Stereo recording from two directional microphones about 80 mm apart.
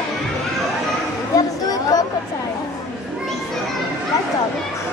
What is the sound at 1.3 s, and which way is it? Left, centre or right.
Chatter, left.